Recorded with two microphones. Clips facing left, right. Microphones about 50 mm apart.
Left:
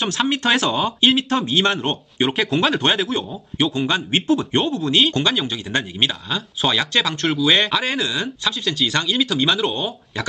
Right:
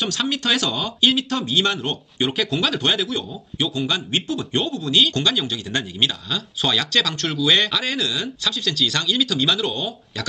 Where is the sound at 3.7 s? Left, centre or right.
Left.